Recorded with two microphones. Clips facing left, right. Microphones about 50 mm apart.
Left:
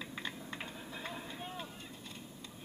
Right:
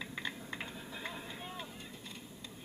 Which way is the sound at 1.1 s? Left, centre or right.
Centre.